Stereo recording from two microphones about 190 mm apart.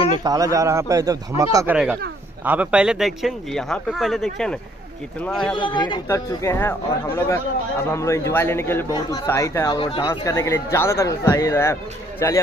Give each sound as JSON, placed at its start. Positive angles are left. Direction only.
{"t": 0.2, "sound": "a man's voice", "side_deg": -20}
{"t": 5.6, "sound": "a man's voice", "side_deg": 25}